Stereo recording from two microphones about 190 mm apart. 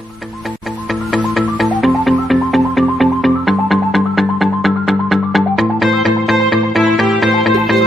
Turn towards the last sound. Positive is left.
turn(degrees=0)  # may be behind; listen again after turning